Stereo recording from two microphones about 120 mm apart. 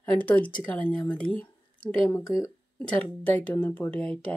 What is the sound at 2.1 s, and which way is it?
Speech, 25° left (ahead or behind).